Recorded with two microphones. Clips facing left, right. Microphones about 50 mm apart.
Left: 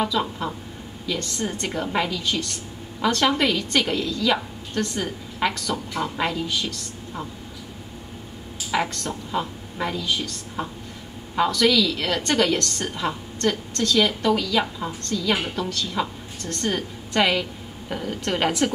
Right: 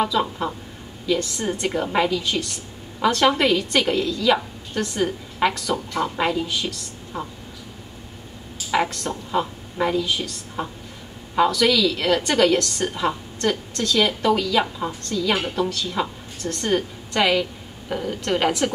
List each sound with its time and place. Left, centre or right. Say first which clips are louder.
0.0 s a woman's voice: right 2 dB; centre
8.7 s a woman's voice: right 3 dB; centre